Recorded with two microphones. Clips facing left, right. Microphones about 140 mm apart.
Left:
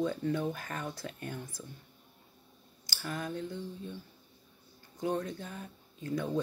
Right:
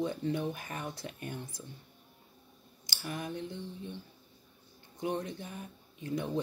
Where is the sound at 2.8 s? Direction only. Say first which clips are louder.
Left 1 dB; 20° right (ahead or behind).